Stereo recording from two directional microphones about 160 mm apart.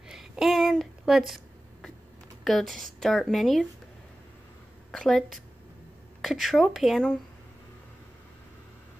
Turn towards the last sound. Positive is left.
turn(degrees=0)  # may be behind; listen again after turning